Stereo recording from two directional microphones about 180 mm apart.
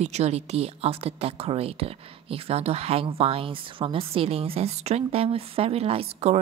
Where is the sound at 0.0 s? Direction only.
35° right (ahead or behind).